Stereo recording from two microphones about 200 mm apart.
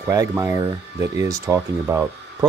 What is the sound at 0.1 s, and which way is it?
Speech, 15° right (ahead or behind).